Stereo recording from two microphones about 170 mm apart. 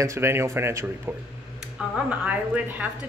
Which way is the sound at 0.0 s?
15° right (ahead or behind).